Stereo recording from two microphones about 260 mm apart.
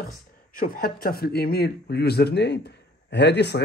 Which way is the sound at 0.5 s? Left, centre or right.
Left.